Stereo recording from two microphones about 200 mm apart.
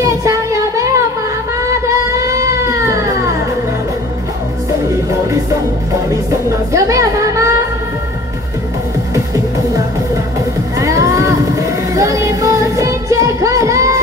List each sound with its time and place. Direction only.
0.0 s a sound: 15° right (ahead or behind)
1.9 s music: 15° right (ahead or behind)
6.5 s a woman's voice: 15° right (ahead or behind)
10.8 s music: 15° right (ahead or behind)